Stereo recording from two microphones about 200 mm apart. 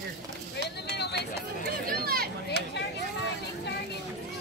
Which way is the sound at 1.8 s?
50° right (ahead or behind).